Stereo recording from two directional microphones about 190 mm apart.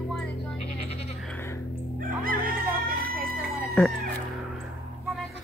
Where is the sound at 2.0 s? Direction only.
50° right (ahead or behind).